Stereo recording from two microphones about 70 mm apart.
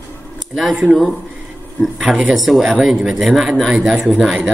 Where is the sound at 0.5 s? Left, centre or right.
Centre.